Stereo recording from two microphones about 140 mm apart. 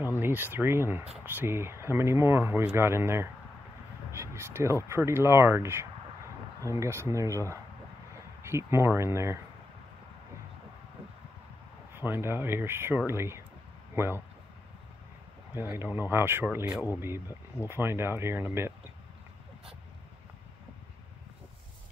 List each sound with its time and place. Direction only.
0.2 s speech: 15° right (ahead or behind)
4.1 s a sound: 20° right (ahead or behind)
4.8 s speech: 20° right (ahead or behind)
11.9 s speech: 15° right (ahead or behind)
15.5 s speech: 15° right (ahead or behind)